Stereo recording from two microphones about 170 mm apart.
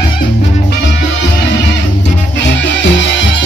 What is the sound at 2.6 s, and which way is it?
Music, 90° left.